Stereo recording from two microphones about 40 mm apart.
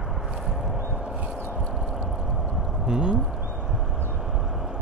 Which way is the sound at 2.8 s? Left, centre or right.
Right.